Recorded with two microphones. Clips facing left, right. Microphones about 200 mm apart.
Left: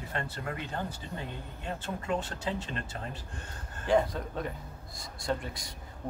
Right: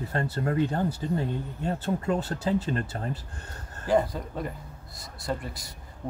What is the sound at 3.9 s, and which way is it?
Speech, centre (ahead or behind).